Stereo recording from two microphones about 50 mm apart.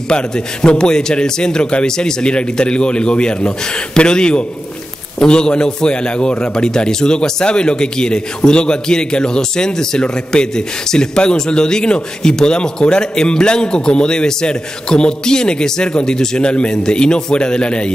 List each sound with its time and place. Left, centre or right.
0.1 s a man's voice: centre